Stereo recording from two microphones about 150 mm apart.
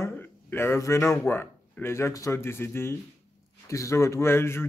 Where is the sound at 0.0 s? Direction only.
15° left (ahead or behind).